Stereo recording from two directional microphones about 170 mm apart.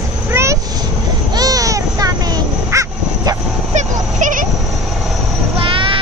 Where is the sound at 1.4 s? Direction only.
20° right (ahead or behind).